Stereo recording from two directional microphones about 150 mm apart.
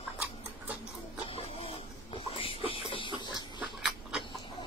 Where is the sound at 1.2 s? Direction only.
40° left (ahead or behind).